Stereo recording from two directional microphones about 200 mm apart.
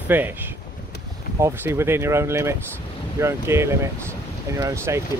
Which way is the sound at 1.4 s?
10° right (ahead or behind).